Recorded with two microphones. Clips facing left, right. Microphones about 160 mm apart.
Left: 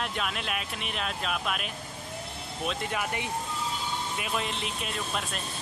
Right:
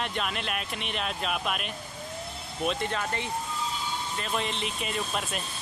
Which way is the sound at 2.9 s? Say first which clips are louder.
Even; 10° left (ahead or behind).